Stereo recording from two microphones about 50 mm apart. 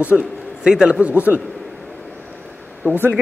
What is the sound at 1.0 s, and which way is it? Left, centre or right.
Speech, right.